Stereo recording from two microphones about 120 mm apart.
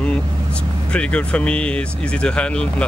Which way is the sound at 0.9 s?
10° left (ahead or behind).